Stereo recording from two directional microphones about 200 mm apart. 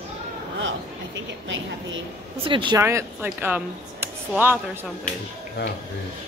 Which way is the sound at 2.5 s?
25° right (ahead or behind).